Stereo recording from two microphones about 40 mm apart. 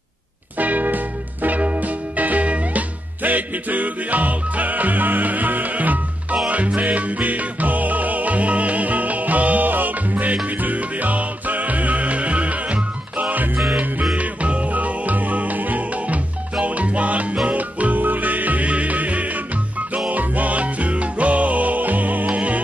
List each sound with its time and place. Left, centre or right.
0.6 s music: right